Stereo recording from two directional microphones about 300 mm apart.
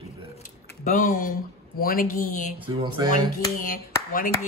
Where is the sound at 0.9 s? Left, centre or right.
Left.